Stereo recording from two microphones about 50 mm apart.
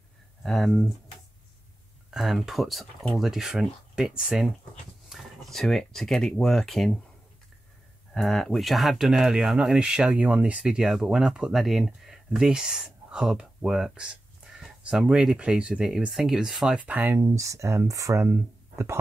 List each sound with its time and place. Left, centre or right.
0.4 s speech: centre
2.0 s speech: centre
5.1 s a sound: centre
5.5 s speech: centre
8.1 s speech: centre; by 10.8 s right
10.8 s speech: centre
11.6 s speech: centre
12.3 s speech: centre
16.1 s speech: centre
16.7 s speech: right
17.1 s speech: right
18.2 s speech: right